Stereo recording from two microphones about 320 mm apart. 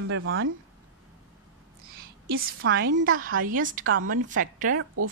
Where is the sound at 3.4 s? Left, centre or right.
Right.